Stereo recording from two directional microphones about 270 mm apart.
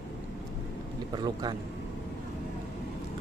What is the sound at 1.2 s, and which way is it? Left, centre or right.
Speech, centre.